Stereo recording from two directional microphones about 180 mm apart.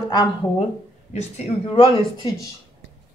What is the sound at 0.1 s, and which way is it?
Speech, 25° left (ahead or behind).